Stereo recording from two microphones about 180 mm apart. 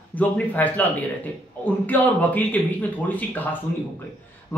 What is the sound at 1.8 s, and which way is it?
Speech, 10° left (ahead or behind).